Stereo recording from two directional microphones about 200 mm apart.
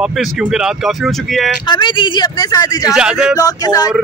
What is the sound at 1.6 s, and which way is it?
Speech, 25° left (ahead or behind).